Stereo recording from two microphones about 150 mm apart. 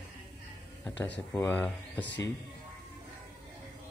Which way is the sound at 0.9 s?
15° left (ahead or behind).